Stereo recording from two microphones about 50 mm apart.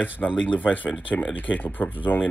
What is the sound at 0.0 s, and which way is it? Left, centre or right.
Speech, left.